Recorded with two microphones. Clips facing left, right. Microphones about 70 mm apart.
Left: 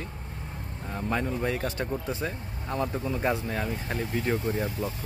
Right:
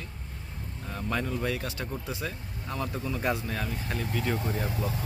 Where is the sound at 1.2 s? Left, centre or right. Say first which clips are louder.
Left 2 dB; centre.